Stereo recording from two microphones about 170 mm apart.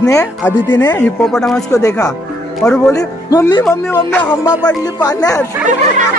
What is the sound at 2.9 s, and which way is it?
Speech, 20° left (ahead or behind).